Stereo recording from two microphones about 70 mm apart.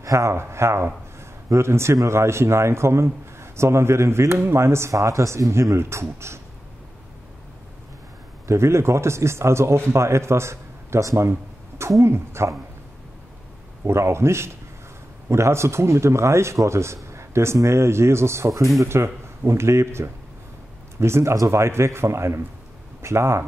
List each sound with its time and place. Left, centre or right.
0.0 s a man's voice: right
8.5 s a man's voice: right
13.8 s a man's voice: right